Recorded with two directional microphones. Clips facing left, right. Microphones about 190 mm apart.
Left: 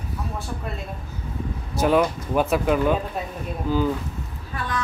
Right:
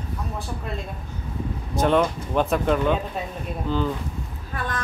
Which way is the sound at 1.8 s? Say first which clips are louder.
Left 1 dB; 5° left (ahead or behind).